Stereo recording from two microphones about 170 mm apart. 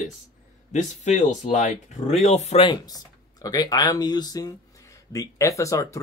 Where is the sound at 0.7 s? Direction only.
45° left (ahead or behind); by 5.8 s 20° left (ahead or behind).